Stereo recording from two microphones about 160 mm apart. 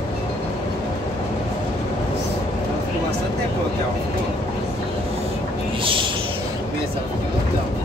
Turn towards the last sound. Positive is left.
turn(degrees=-30)  # may be behind; listen again after turning